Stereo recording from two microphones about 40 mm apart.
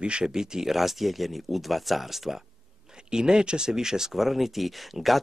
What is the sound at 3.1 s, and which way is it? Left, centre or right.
A man's voice, centre.